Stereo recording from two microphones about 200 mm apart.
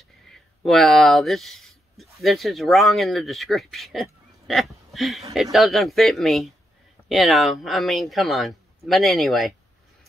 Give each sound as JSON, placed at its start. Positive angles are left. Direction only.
{"t": 0.7, "sound": "speech", "side_deg": 0}